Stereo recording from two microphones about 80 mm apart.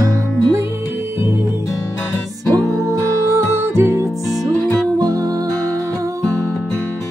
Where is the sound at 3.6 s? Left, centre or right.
Right.